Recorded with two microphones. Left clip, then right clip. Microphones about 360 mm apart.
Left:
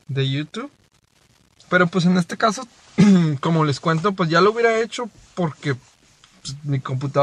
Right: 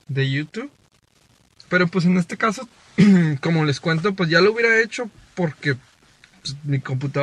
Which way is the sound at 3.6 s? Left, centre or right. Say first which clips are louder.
Left 1 dB; left.